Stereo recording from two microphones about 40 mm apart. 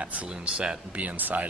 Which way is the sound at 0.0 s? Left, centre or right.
Right.